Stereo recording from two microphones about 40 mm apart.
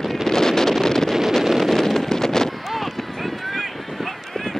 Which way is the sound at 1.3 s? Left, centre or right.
Centre.